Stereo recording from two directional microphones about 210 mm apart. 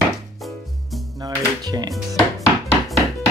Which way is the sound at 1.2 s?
20° right (ahead or behind).